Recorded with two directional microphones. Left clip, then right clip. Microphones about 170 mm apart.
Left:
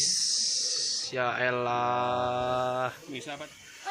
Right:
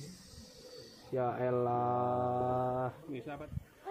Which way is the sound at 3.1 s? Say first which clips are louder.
Left 5 dB; 50° left (ahead or behind).